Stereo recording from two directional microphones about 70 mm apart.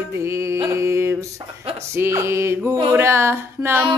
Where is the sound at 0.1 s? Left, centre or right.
Right.